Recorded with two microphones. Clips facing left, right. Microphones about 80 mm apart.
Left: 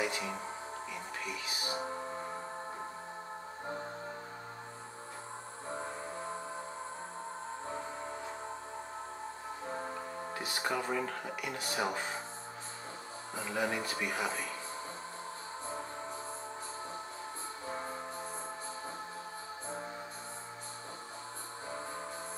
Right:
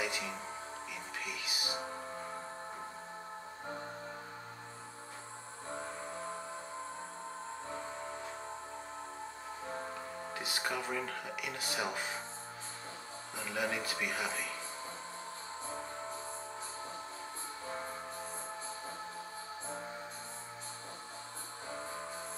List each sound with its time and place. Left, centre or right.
0.0 s speech: centre
9.7 s music: centre
10.4 s speech: centre
13.4 s speech: centre
17.6 s music: centre